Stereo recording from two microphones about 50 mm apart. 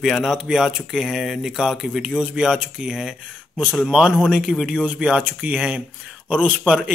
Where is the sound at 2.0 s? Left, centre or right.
Centre.